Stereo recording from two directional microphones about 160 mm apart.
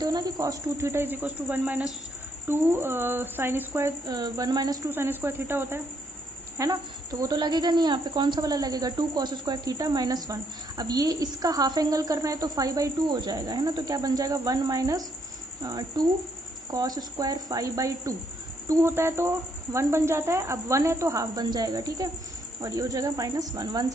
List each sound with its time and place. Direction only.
0.0 s speech: 25° right (ahead or behind)